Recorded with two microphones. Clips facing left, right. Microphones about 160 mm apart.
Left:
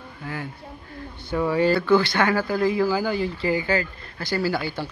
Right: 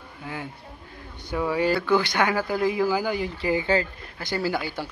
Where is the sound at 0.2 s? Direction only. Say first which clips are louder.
Left 2 dB; 20° right (ahead or behind).